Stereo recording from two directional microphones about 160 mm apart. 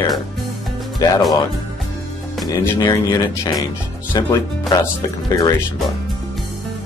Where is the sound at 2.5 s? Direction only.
20° left (ahead or behind).